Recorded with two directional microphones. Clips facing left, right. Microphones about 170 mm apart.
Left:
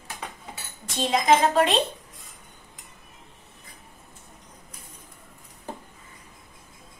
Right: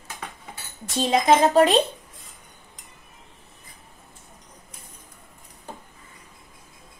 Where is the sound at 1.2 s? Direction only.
40° right (ahead or behind).